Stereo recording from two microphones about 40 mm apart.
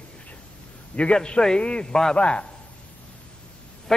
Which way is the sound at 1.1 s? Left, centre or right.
Centre.